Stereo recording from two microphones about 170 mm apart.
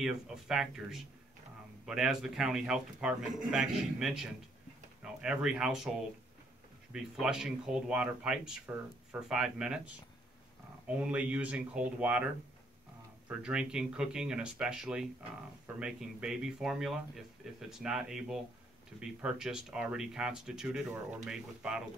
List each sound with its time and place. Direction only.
0.0 s speech: centre (ahead or behind)
13.3 s speech: 5° right (ahead or behind)
20.9 s speech: 15° right (ahead or behind)
21.3 s speech: 5° right (ahead or behind)